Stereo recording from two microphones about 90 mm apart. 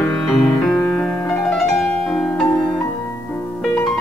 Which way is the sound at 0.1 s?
Centre (ahead or behind).